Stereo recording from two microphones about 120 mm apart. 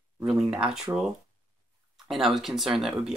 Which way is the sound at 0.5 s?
5° right (ahead or behind).